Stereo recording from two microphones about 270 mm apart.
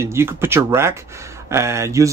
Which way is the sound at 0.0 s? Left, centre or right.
Centre.